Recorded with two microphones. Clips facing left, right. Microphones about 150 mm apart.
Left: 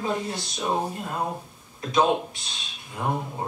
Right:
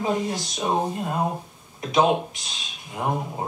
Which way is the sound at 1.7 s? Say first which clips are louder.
Right 2 dB; 15° right (ahead or behind).